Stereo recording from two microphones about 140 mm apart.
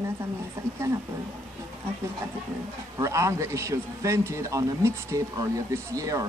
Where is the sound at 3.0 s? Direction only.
20° right (ahead or behind).